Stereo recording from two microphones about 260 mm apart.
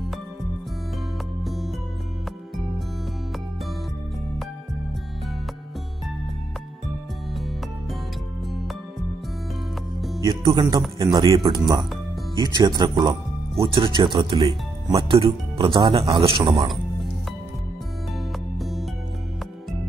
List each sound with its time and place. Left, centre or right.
1.4 s music: centre
9.9 s music: centre
10.2 s speech: centre
18.6 s music: centre